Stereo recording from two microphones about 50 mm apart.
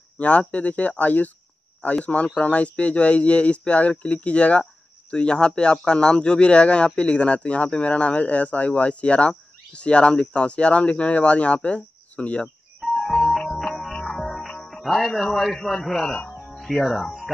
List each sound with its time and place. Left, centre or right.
0.2 s speech: left
12.8 s music: centre
15.0 s a man's voice: centre
16.3 s music: centre
16.8 s speech: centre